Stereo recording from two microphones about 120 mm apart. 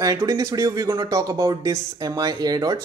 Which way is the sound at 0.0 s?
25° right (ahead or behind).